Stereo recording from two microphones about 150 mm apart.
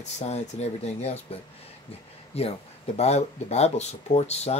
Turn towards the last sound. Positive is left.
turn(degrees=45)  # may be behind; listen again after turning